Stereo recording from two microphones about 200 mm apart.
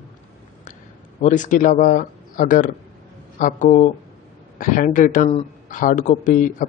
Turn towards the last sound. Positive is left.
turn(degrees=40)  # may be behind; listen again after turning